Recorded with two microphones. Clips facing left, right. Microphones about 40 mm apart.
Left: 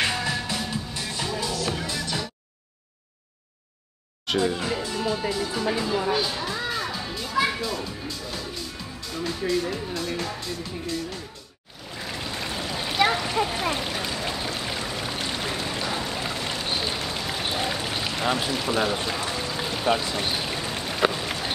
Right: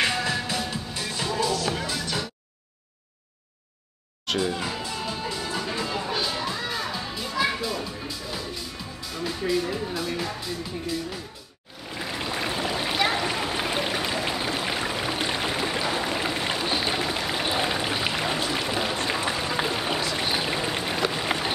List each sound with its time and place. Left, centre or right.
0.0 s music: centre
4.3 s speech: centre
12.0 s a sound: centre
18.7 s speech: centre
19.0 s a sound: right
21.1 s run: centre